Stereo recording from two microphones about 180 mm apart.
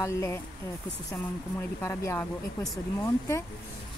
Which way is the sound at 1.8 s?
15° left (ahead or behind).